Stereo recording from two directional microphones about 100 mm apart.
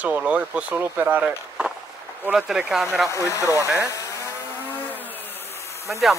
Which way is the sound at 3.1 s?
30° left (ahead or behind).